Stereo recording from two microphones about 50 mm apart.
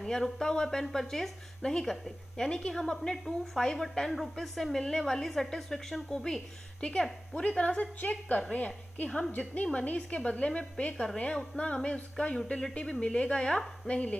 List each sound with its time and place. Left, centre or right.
0.0 s a woman's voice: centre